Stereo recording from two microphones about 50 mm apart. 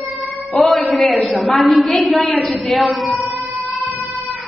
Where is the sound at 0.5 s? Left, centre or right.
Centre.